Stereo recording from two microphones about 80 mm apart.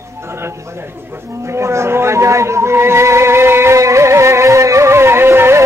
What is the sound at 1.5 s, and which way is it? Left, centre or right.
Music, right.